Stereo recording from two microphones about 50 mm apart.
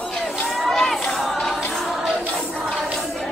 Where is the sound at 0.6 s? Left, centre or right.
Centre.